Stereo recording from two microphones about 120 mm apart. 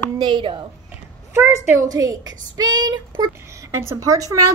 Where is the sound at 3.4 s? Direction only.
25° right (ahead or behind).